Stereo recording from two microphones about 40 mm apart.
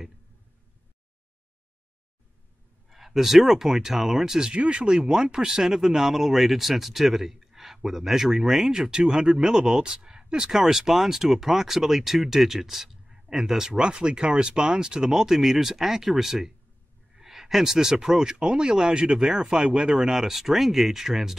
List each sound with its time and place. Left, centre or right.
2.9 s speech: centre
4.6 s speech: right; by 13.7 s centre
13.7 s speech: right